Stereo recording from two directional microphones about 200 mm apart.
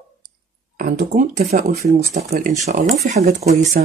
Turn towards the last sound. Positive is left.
turn(degrees=-35)  # may be behind; listen again after turning